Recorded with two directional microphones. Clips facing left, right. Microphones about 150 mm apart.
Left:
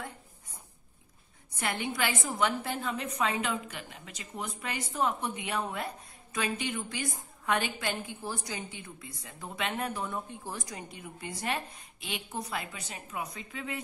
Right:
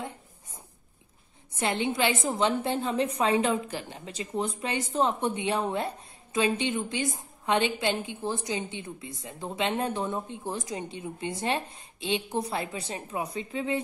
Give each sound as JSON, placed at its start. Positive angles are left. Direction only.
{"t": 1.6, "sound": "a woman's voice", "side_deg": -25}